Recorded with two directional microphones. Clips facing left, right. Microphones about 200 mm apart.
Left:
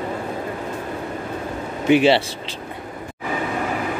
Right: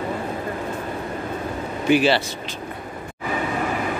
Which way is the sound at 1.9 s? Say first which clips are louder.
Left 3 dB; 25° left (ahead or behind).